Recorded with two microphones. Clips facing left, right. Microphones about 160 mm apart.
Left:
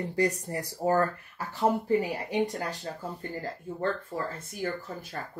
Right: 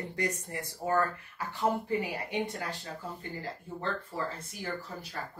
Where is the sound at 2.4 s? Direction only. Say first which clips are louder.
Left 5 dB; 40° left (ahead or behind).